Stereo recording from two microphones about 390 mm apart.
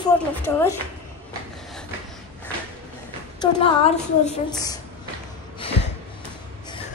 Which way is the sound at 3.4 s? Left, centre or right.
Centre.